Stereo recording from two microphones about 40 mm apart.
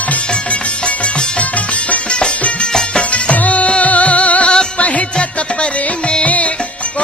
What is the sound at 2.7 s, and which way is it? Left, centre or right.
Music, left.